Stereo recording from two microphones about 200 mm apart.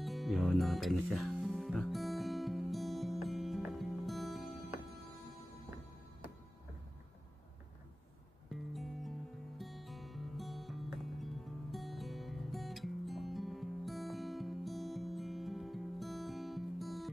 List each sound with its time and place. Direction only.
0.0 s music: centre (ahead or behind)
8.7 s music: centre (ahead or behind)